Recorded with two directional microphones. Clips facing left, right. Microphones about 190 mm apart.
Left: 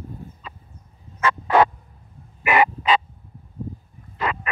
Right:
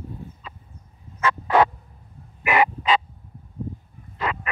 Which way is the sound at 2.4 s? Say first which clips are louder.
Left 1 dB; 65° left (ahead or behind).